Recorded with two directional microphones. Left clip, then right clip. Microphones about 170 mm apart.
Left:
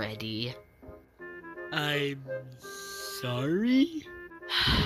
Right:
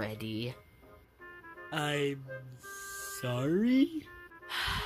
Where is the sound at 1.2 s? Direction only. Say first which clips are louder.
Left 6 dB; 45° left (ahead or behind).